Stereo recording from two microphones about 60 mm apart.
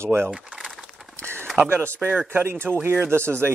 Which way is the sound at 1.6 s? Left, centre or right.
Right.